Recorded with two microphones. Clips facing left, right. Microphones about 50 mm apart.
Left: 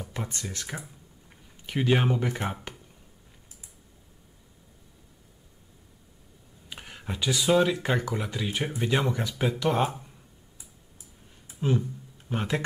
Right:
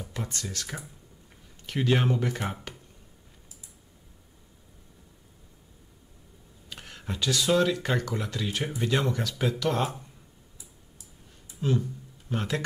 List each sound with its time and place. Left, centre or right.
0.2 s speech: left
0.7 s speech: centre
6.7 s speech: centre
11.6 s speech: left